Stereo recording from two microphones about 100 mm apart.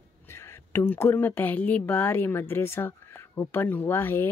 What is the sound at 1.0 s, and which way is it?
A woman's voice, 20° left (ahead or behind).